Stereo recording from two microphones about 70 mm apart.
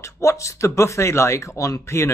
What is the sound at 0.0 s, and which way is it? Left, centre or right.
Speech, left.